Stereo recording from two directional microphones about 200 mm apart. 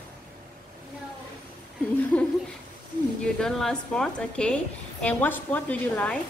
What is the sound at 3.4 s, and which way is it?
A woman's voice, 5° left (ahead or behind).